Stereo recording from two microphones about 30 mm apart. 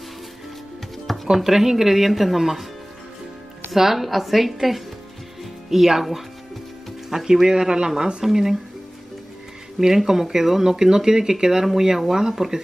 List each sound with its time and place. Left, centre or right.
1.2 s speech: centre
3.7 s a woman's voice: centre
5.4 s music: centre
7.1 s speech: centre
7.5 s speech: right
8.2 s speech: centre
9.8 s speech: centre